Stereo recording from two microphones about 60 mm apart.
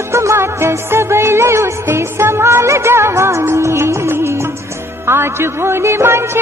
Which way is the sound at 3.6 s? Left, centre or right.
Right.